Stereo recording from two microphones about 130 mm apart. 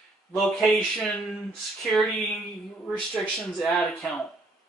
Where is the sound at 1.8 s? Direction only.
Centre (ahead or behind).